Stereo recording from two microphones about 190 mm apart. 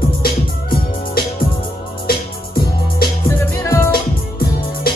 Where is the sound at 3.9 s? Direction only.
50° left (ahead or behind).